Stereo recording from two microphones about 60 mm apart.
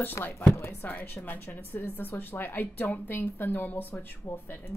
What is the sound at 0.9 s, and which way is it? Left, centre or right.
Speech, left.